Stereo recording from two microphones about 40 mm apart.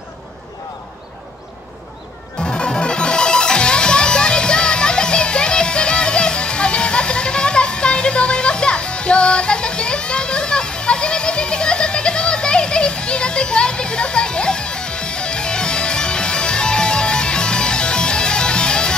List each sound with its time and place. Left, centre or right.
2.4 s music: left